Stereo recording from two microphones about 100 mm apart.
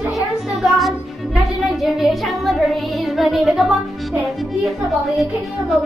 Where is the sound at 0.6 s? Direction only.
Centre (ahead or behind).